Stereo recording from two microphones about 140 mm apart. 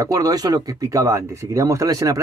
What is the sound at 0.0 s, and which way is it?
Speech, 25° right (ahead or behind).